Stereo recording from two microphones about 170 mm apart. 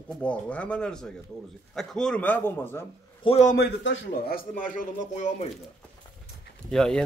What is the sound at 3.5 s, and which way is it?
A man's voice, 80° left.